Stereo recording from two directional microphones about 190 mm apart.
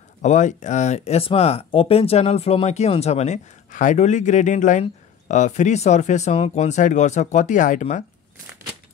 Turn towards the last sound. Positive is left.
turn(degrees=40)  # may be behind; listen again after turning